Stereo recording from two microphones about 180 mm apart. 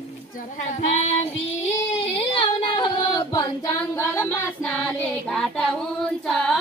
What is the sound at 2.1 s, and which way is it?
Child singing, 30° left (ahead or behind).